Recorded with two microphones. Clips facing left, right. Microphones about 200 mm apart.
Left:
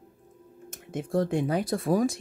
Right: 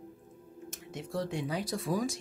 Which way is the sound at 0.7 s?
50° left (ahead or behind).